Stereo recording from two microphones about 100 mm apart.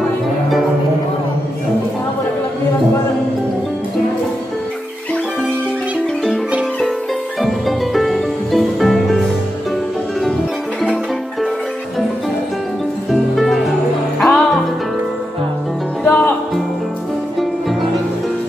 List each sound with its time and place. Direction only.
7.4 s music: centre (ahead or behind)
13.1 s music: centre (ahead or behind)
16.0 s music: 15° left (ahead or behind)